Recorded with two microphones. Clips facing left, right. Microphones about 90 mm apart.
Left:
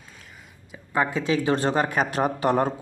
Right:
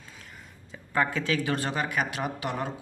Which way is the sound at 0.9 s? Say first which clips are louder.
Left 3 dB; 20° left (ahead or behind).